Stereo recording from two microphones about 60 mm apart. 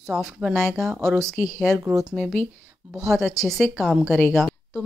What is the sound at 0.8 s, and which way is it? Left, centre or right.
Speech, right.